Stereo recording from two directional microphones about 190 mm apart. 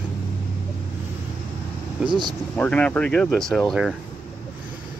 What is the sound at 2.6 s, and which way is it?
Speech, 5° left (ahead or behind).